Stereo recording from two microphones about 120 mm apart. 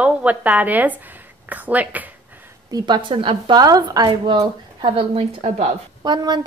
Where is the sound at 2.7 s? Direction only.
40° right (ahead or behind).